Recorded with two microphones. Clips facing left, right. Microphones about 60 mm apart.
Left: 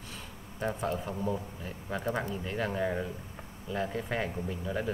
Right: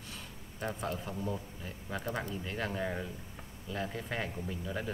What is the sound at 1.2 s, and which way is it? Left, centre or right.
A man's voice, centre.